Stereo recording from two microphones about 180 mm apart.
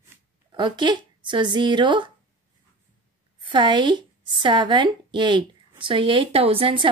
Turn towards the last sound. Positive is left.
turn(degrees=-30)  # may be behind; listen again after turning